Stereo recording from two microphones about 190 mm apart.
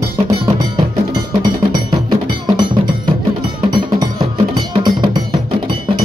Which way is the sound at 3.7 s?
25° right (ahead or behind).